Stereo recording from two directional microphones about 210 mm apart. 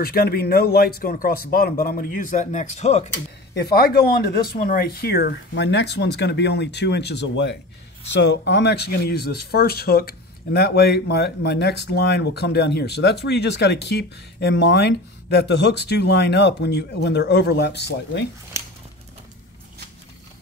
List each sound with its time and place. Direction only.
0.0 s speech: 45° left (ahead or behind)
3.7 s speech: 45° left (ahead or behind)